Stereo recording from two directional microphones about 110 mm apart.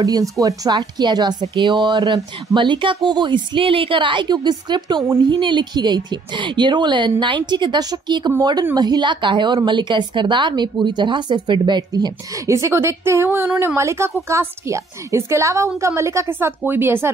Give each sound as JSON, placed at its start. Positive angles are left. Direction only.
{"t": 0.0, "sound": "a woman's voice", "side_deg": -35}